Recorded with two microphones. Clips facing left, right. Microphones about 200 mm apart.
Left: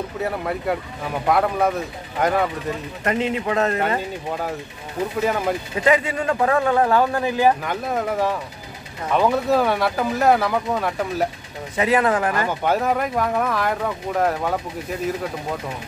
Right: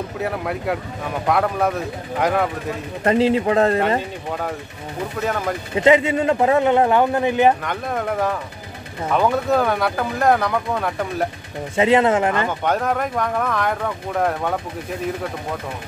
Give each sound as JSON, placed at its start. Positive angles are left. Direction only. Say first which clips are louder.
{"t": 0.2, "sound": "speech", "louder": "even", "side_deg": 0}
{"t": 3.0, "sound": "speech", "louder": "right 7 dB", "side_deg": -30}
{"t": 4.3, "sound": "speech", "louder": "right 1 dB", "side_deg": 5}
{"t": 5.8, "sound": "speech", "louder": "right 6 dB", "side_deg": -25}
{"t": 7.6, "sound": "speech", "louder": "even", "side_deg": 5}
{"t": 11.7, "sound": "speech", "louder": "right 3 dB", "side_deg": -25}
{"t": 12.4, "sound": "speech", "louder": "even", "side_deg": 5}